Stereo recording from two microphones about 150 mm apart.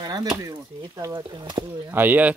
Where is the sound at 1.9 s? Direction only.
10° right (ahead or behind).